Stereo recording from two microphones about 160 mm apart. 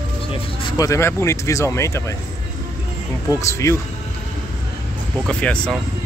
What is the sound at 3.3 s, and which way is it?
Speech, 20° left (ahead or behind).